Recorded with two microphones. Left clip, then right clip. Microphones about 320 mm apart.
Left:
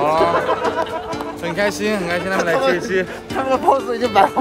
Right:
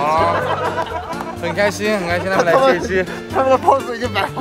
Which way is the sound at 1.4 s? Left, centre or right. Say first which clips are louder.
Right 2 dB; centre.